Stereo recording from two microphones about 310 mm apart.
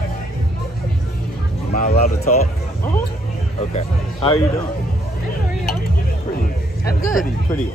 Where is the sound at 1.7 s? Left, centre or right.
Left.